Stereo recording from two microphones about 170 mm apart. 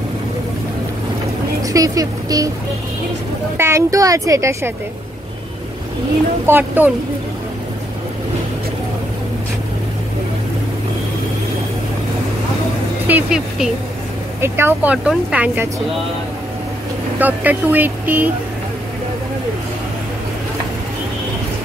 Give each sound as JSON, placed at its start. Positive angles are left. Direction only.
{"t": 1.6, "sound": "speech", "side_deg": -20}
{"t": 3.5, "sound": "speech", "side_deg": -15}
{"t": 6.4, "sound": "speech", "side_deg": -10}
{"t": 13.0, "sound": "speech", "side_deg": -5}
{"t": 17.2, "sound": "speech", "side_deg": -10}